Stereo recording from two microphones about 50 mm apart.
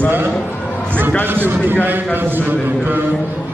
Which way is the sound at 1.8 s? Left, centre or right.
Right.